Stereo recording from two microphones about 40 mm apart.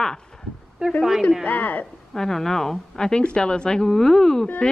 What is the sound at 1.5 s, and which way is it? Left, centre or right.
Speech, left.